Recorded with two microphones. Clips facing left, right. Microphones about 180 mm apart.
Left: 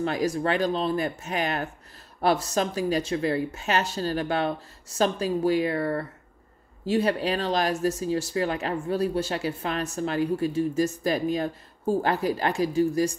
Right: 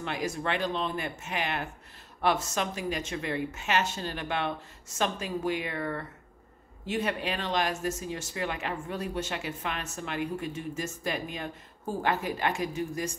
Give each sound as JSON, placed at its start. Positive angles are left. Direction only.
{"t": 0.0, "sound": "speech", "side_deg": 40}